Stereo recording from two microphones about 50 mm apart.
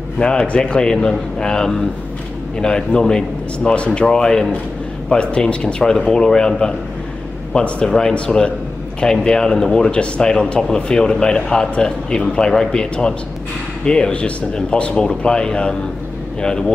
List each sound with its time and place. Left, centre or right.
0.2 s speech: centre